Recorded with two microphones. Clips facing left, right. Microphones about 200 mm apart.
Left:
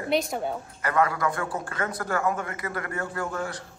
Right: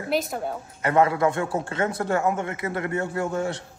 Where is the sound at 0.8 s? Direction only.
25° right (ahead or behind).